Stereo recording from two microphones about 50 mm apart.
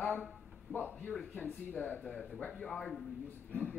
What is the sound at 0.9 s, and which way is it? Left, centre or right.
Speech, left.